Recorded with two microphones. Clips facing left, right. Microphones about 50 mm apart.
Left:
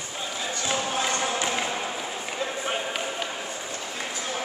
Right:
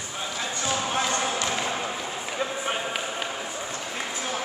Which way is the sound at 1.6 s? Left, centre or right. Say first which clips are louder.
Even; centre.